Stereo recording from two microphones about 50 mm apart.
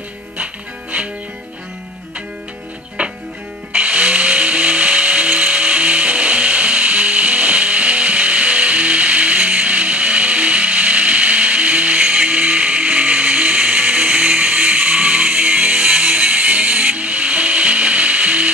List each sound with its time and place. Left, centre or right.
3.0 s music: right